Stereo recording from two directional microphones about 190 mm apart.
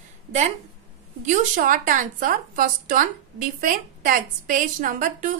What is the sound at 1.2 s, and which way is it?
A woman's voice, 40° right (ahead or behind).